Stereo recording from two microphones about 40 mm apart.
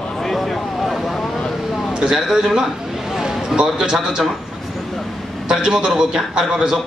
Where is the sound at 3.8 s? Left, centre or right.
Centre.